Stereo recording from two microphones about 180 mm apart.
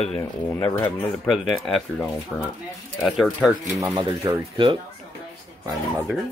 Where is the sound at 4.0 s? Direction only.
25° right (ahead or behind).